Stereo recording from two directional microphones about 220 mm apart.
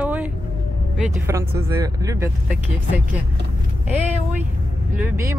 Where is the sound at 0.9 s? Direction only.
10° right (ahead or behind).